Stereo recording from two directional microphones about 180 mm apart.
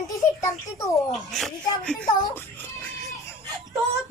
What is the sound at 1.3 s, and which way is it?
Speech, 5° left (ahead or behind).